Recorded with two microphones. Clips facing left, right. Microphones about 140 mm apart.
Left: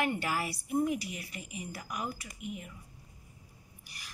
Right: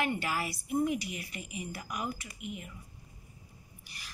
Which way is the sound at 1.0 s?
35° left (ahead or behind).